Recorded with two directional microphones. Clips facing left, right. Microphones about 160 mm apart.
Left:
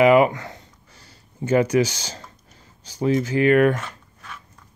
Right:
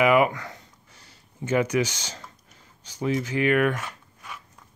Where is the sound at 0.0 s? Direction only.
30° left (ahead or behind).